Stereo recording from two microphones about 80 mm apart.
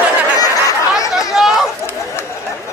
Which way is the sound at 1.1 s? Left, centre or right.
Centre.